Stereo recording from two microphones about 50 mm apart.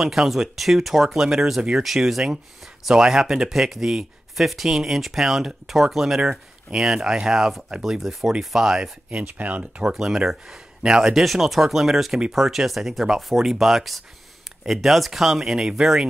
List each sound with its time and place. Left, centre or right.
0.0 s speech: centre
9.2 s speech: right
9.9 s speech: centre